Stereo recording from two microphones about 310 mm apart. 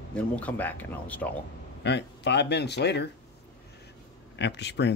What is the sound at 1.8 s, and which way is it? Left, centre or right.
Speech, left.